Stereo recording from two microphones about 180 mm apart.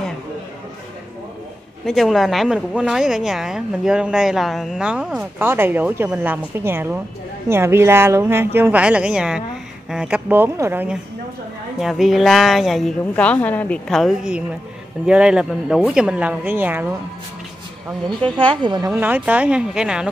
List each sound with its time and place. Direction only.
1.9 s a woman's voice: centre (ahead or behind)
18.4 s a woman's voice: 25° right (ahead or behind)
18.9 s speech: 10° right (ahead or behind)